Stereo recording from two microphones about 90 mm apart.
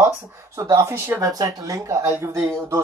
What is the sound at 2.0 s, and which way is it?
Speech, 25° right (ahead or behind).